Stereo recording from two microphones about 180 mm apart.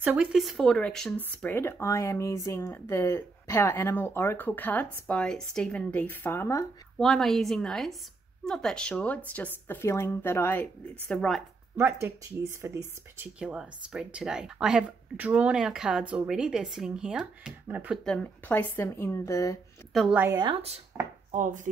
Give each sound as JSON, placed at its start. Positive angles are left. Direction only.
{"t": 0.0, "sound": "speech", "side_deg": -5}
{"t": 7.0, "sound": "speech", "side_deg": 0}
{"t": 11.7, "sound": "speech", "side_deg": -15}
{"t": 13.4, "sound": "speech", "side_deg": -5}
{"t": 19.9, "sound": "speech", "side_deg": 0}
{"t": 20.3, "sound": "speech", "side_deg": -30}
{"t": 21.3, "sound": "chopping", "side_deg": -40}